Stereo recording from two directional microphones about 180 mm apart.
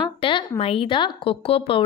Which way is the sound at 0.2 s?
30° left (ahead or behind).